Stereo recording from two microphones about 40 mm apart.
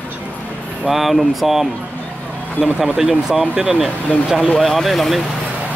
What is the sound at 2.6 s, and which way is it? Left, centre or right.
Speech, centre.